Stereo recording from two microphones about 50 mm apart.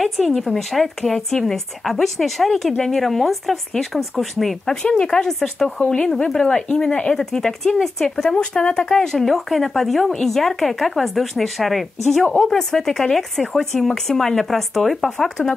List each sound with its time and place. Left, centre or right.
0.0 s speech: centre
4.8 s speech: centre
7.2 s speech: centre